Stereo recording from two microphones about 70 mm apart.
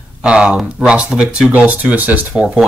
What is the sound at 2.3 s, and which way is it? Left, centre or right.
Speech, centre.